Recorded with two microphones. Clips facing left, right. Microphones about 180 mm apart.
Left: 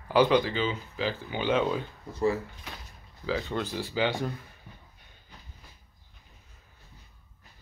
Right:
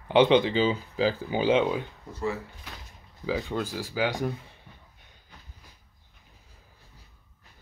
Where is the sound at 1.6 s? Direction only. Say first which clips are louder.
Right 2 dB; 10° right (ahead or behind).